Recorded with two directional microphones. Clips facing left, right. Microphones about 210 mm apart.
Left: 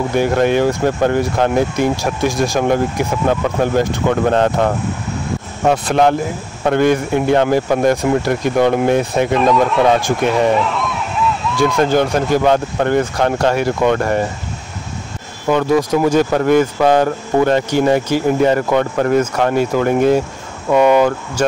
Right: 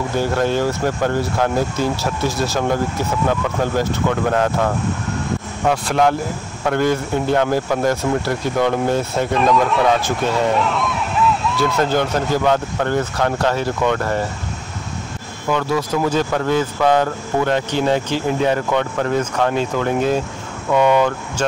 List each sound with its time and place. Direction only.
0.1 s speech: 15° left (ahead or behind)
5.7 s speech: 25° left (ahead or behind)
9.4 s speech: centre (ahead or behind)
10.6 s a sound: centre (ahead or behind)
11.5 s speech: 15° left (ahead or behind)
15.4 s speech: 20° left (ahead or behind)